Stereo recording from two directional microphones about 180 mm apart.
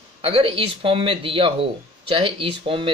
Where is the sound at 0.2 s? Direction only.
30° right (ahead or behind).